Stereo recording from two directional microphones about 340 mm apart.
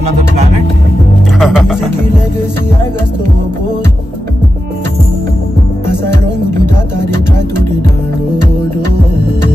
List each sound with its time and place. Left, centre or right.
1.4 s speech: centre